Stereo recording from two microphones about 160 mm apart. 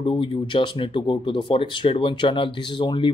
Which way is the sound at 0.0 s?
30° left (ahead or behind).